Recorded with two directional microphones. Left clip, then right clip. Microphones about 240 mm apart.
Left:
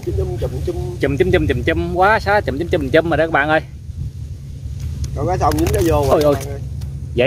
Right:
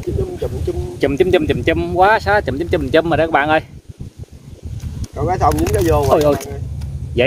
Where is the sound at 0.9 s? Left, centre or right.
Centre.